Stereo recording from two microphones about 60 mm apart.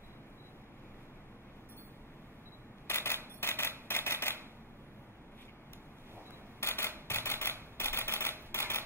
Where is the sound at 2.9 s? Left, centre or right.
Left.